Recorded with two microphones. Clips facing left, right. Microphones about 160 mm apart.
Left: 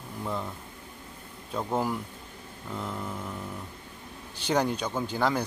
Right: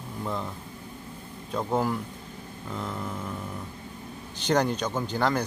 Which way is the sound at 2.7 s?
5° left (ahead or behind).